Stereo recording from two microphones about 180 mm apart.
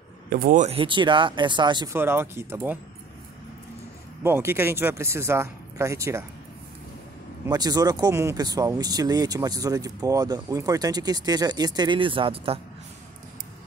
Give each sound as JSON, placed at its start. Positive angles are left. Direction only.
{"t": 0.3, "sound": "speech", "side_deg": -50}
{"t": 0.7, "sound": "speech", "side_deg": -30}
{"t": 2.0, "sound": "speech", "side_deg": -15}
{"t": 4.2, "sound": "speech", "side_deg": -15}
{"t": 7.4, "sound": "speech", "side_deg": -20}